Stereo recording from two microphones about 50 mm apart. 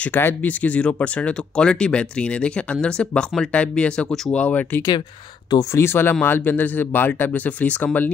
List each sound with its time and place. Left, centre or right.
0.1 s speech: left
0.4 s speech: left
5.7 s speech: left